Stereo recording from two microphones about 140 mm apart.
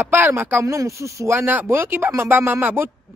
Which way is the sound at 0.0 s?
15° right (ahead or behind).